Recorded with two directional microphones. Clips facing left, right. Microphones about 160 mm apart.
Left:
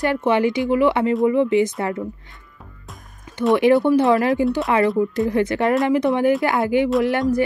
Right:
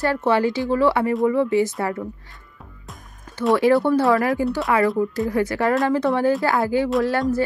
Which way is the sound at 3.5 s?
20° left (ahead or behind).